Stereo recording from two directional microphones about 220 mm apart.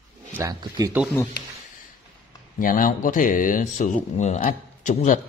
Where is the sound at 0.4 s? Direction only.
15° right (ahead or behind).